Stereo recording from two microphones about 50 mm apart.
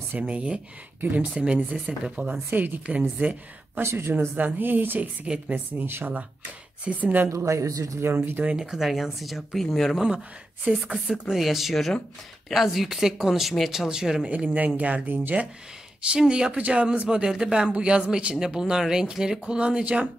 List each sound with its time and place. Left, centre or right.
0.2 s speech: right
1.0 s a woman's voice: right
1.3 s a woman's voice: centre; by 3.8 s right
3.8 s speech: right
4.6 s a woman's voice: right
5.2 s speech: right
5.8 s speech: right
6.8 s a woman's voice: right
7.2 s a man's voice: right
8.5 s speech: centre
10.0 s speech: centre
14.3 s speech: right